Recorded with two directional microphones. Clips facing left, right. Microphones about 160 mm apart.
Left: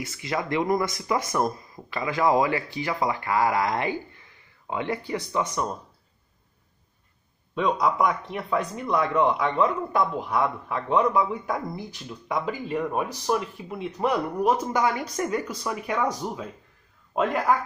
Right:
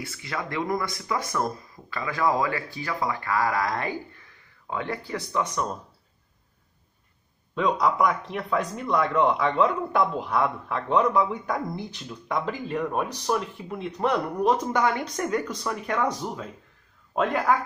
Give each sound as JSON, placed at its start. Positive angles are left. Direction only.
{"t": 0.0, "sound": "speech", "side_deg": 20}
{"t": 7.5, "sound": "speech", "side_deg": 0}